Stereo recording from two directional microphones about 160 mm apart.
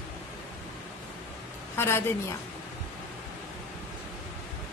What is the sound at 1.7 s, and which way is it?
Speech, 15° left (ahead or behind).